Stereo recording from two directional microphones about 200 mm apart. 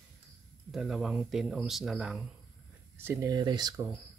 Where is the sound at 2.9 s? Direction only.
15° right (ahead or behind).